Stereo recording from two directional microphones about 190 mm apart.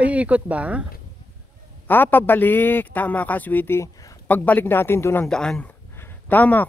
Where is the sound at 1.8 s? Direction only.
10° left (ahead or behind).